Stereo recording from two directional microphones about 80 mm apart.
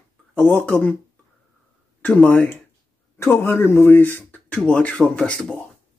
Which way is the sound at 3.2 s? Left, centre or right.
Left.